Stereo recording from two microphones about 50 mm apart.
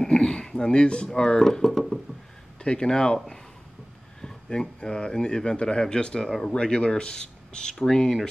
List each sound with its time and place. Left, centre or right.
0.0 s speech: centre
2.6 s speech: centre
4.2 s speech: centre